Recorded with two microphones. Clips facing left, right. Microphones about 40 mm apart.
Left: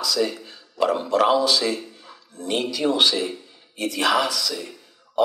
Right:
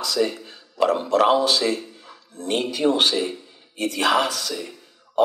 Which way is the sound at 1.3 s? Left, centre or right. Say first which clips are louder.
Right 1 dB; right.